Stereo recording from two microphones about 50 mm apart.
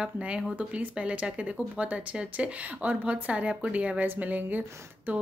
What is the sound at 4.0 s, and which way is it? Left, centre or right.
Speech, right.